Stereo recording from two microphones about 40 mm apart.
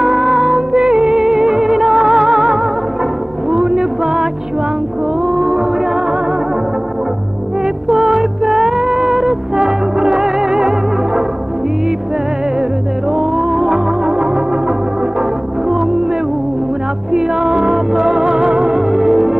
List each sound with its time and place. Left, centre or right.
0.0 s music: centre
7.6 s music: centre
13.1 s music: centre
17.1 s music: centre